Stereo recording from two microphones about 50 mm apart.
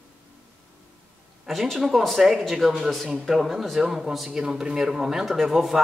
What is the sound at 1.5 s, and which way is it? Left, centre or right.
Speech, centre.